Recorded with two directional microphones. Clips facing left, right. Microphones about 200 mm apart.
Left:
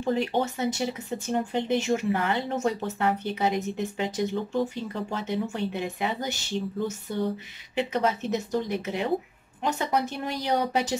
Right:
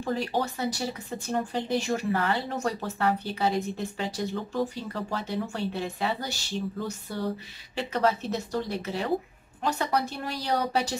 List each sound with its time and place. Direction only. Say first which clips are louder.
0.0 s speech: left 3 dB; 20° left (ahead or behind)
7.1 s a sound: left 5 dB; 20° left (ahead or behind)
7.7 s speech: even; 20° left (ahead or behind)